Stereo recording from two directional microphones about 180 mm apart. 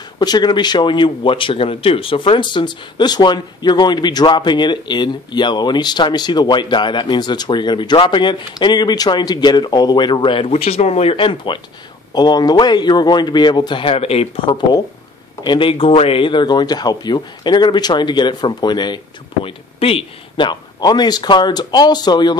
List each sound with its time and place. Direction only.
0.2 s speech: 25° left (ahead or behind)